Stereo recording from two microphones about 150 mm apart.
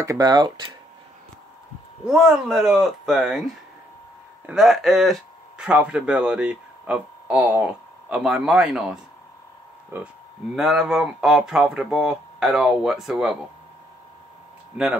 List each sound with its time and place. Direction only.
0.0 s speech: 25° right (ahead or behind)
2.0 s speech: 5° right (ahead or behind)
10.5 s speech: 5° right (ahead or behind)